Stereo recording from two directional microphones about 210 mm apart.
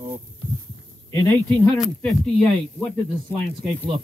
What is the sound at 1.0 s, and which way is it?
Speech, 15° left (ahead or behind).